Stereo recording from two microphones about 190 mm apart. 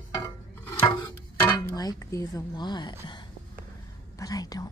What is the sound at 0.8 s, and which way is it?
Music, 20° left (ahead or behind).